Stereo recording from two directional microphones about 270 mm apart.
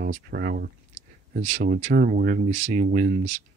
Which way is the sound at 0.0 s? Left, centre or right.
Right.